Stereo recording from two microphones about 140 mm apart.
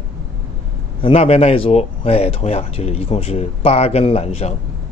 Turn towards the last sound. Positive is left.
turn(degrees=50)  # may be behind; listen again after turning